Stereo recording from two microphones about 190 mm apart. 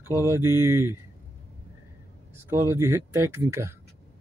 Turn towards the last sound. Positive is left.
turn(degrees=-15)  # may be behind; listen again after turning